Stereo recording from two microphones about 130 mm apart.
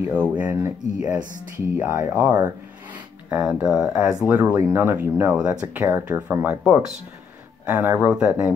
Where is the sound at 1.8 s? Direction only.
20° right (ahead or behind).